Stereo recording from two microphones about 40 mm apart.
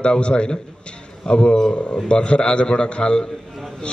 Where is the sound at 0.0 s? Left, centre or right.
Left.